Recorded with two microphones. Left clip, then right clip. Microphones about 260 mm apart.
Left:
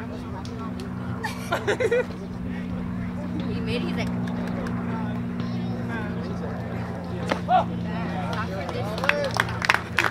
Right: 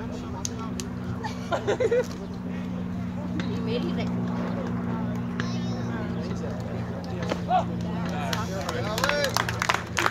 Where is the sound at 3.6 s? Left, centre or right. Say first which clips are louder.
Left 1 dB; left.